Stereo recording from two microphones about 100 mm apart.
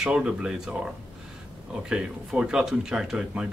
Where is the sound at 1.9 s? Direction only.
5° right (ahead or behind).